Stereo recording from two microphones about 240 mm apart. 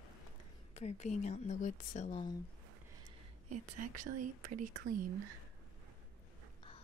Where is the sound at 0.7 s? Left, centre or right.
Left.